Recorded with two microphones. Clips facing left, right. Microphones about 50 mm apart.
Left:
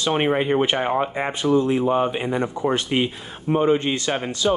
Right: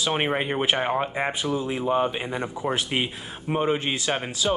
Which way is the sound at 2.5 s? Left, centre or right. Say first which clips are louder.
Left 4 dB; centre.